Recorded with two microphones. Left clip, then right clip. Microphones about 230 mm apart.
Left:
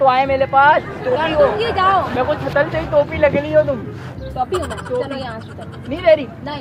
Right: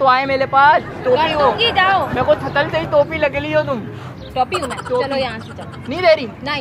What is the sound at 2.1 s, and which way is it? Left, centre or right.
Speech, right.